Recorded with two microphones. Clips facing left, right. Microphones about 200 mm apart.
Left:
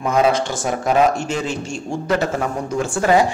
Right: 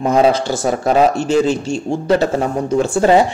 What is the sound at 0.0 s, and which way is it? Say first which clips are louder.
A man's voice: right 4 dB; 35° right (ahead or behind).